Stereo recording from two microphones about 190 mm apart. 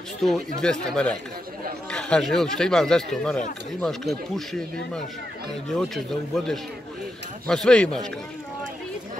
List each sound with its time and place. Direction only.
0.2 s speech: centre (ahead or behind)